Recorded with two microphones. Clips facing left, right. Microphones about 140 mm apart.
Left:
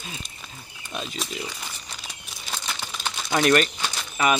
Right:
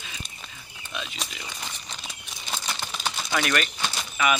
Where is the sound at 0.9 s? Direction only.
40° left (ahead or behind).